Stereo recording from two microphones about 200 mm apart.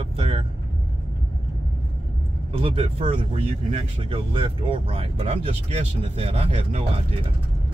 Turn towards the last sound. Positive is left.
turn(degrees=-30)  # may be behind; listen again after turning